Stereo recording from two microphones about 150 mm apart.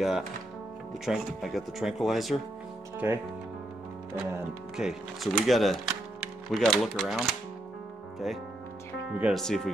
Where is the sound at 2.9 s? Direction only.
15° right (ahead or behind).